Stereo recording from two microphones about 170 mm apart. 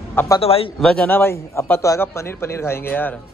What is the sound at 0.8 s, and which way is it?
A man's voice, 5° left (ahead or behind).